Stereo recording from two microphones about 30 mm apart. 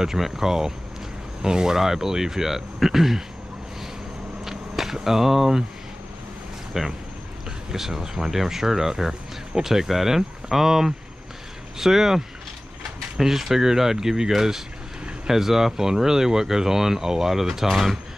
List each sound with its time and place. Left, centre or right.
0.2 s speech: centre
4.5 s speech: centre
6.7 s speech: centre
13.2 s speech: centre